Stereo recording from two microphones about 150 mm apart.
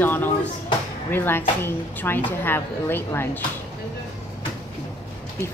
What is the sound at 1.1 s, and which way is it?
A woman's voice, 15° left (ahead or behind).